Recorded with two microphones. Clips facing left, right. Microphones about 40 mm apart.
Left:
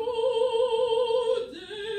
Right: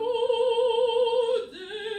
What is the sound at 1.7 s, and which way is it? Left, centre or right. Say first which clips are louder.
Music: right 1 dB; centre.